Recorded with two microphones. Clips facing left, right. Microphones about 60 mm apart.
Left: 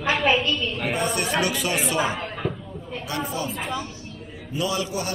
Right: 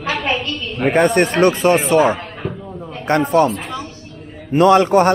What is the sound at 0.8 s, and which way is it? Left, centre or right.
Speech, right.